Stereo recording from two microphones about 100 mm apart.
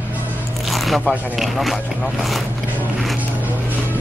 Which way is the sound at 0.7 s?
Centre (ahead or behind).